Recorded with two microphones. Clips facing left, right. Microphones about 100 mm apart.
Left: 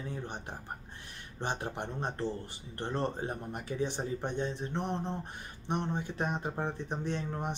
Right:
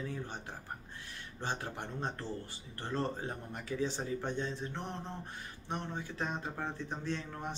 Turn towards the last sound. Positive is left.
turn(degrees=20)  # may be behind; listen again after turning